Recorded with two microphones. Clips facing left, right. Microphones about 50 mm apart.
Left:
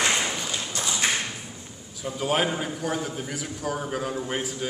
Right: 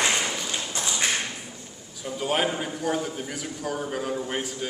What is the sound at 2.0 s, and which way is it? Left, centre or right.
A man's voice, centre.